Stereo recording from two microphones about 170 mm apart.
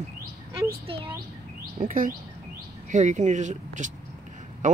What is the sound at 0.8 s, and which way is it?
Speech, 30° right (ahead or behind).